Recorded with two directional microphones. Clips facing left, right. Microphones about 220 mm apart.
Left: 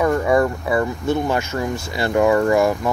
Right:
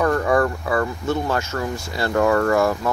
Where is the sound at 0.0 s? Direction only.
10° left (ahead or behind).